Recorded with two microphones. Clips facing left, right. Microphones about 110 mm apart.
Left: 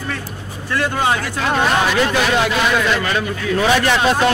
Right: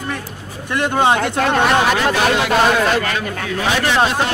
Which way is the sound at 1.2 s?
60° right (ahead or behind).